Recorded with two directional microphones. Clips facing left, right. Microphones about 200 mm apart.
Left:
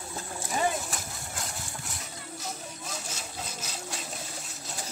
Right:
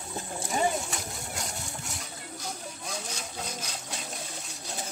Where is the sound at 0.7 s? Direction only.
Centre (ahead or behind).